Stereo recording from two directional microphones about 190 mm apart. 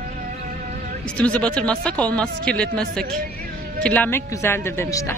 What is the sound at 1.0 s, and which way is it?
Speech, 5° left (ahead or behind).